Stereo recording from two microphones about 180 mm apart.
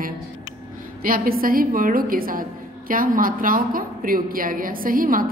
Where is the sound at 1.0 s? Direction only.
50° right (ahead or behind).